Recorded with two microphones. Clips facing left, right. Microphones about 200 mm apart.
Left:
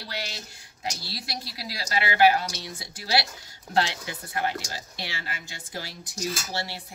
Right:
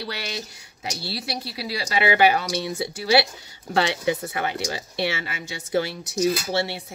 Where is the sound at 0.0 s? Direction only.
65° right (ahead or behind).